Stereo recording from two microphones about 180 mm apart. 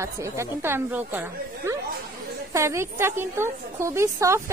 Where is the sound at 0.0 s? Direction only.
15° right (ahead or behind).